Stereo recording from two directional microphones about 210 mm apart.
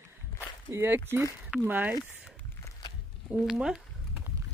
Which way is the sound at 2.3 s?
10° left (ahead or behind).